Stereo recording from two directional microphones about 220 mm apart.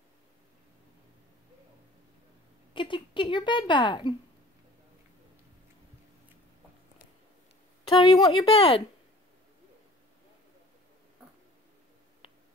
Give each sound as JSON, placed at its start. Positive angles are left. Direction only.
{"t": 2.7, "sound": "speech", "side_deg": 20}
{"t": 7.9, "sound": "speech", "side_deg": 25}
{"t": 12.2, "sound": "finger snapping", "side_deg": 25}